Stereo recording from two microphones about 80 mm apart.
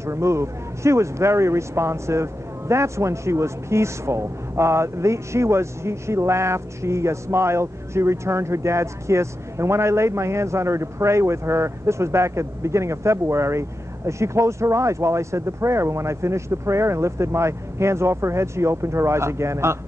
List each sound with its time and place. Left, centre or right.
0.0 s speech: right